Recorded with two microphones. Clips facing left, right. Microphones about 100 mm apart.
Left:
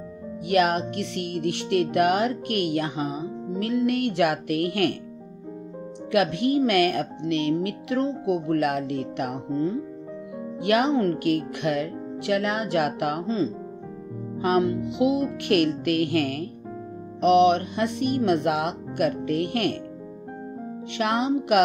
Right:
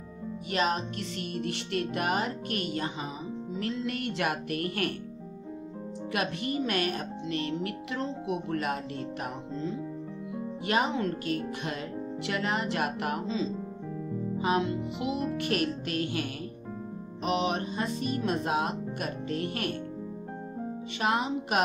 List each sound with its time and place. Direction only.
0.5 s speech: 65° left (ahead or behind)
6.1 s speech: 60° left (ahead or behind)
11.6 s speech: 65° left (ahead or behind)
17.2 s speech: 65° left (ahead or behind)
21.0 s speech: 70° left (ahead or behind)